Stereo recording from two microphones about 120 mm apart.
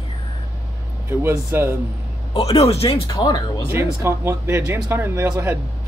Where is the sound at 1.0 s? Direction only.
20° right (ahead or behind).